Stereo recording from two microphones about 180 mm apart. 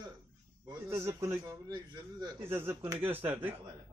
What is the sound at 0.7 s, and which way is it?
Speech, 15° right (ahead or behind).